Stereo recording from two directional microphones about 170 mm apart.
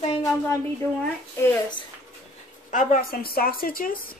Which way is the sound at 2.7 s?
50° left (ahead or behind).